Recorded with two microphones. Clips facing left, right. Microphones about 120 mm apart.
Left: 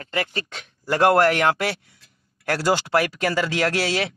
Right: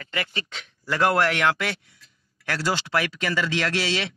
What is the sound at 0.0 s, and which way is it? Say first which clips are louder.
Speech: left 4 dB; 40° left (ahead or behind).